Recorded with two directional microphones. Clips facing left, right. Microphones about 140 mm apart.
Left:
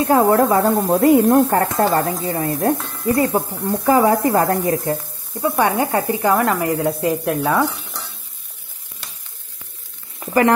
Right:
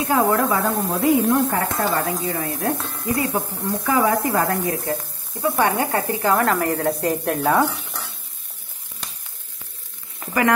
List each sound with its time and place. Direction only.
0.0 s speech: 35° left (ahead or behind); by 6.5 s 15° left (ahead or behind)
6.6 s stir: 10° left (ahead or behind)